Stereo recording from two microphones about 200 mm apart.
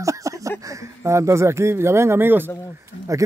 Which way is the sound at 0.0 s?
15° right (ahead or behind).